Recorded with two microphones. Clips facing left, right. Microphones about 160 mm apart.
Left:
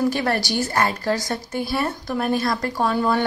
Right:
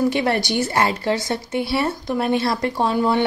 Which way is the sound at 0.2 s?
20° right (ahead or behind).